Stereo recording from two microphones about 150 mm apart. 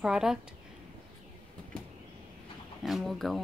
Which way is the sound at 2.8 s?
Centre (ahead or behind).